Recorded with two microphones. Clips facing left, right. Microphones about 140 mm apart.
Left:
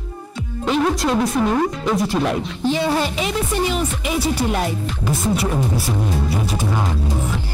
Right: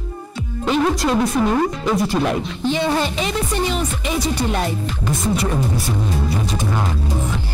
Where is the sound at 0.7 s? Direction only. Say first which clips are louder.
Right 1 dB; centre (ahead or behind).